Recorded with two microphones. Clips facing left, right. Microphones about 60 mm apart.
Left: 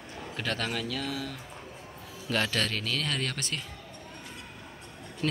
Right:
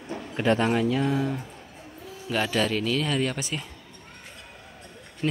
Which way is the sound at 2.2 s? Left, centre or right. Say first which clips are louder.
Right 4 dB; centre.